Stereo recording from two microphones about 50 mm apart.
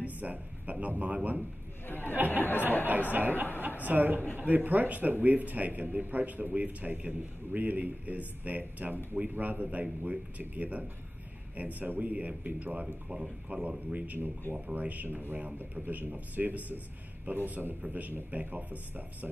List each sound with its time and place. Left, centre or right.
0.0 s speech: right
1.9 s a sound: left
2.1 s a man's voice: right
2.4 s a sound: left
3.1 s a man's voice: right
12.8 s speech: centre
13.9 s a man's voice: right